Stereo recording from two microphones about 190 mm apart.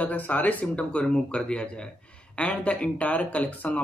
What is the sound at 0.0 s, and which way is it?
Speech, 10° left (ahead or behind).